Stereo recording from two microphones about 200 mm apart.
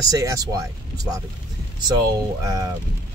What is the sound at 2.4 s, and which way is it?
Speech, 15° right (ahead or behind).